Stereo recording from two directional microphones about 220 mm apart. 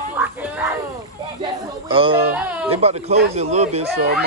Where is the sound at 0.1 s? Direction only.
10° right (ahead or behind).